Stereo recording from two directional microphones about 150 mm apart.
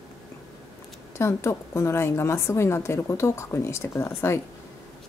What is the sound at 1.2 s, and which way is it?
A woman's voice, 20° left (ahead or behind).